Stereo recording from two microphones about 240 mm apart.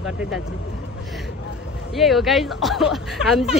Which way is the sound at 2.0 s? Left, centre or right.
Centre.